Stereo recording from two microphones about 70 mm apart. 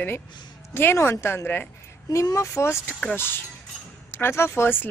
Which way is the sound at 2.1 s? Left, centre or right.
Left.